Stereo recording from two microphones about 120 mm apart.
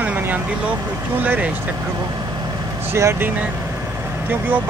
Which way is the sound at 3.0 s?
20° right (ahead or behind).